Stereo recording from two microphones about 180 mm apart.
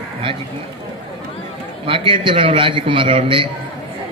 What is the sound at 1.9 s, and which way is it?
Speech, 30° right (ahead or behind).